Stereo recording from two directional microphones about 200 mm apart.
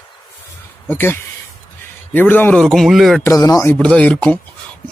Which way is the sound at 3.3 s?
15° left (ahead or behind).